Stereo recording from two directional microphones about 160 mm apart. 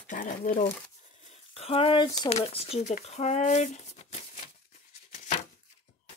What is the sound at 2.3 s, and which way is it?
Speech, 40° left (ahead or behind).